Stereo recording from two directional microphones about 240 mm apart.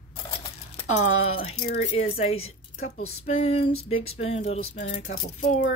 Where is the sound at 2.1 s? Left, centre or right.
Left.